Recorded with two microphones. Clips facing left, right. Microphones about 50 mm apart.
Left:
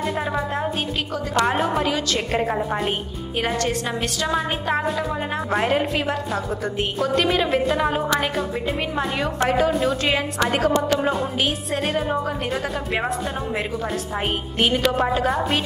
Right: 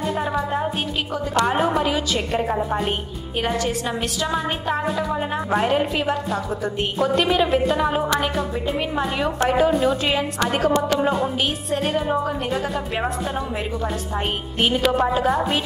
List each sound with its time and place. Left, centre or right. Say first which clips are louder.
0.0 s music: right 1 dB; centre
1.5 s a woman's voice: right 1 dB; centre
14.6 s a woman's voice: right 1 dB; centre